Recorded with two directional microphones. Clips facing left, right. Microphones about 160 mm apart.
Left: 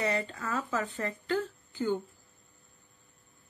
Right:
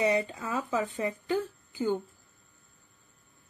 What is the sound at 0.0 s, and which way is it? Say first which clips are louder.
A woman's voice: right 4 dB; 15° right (ahead or behind).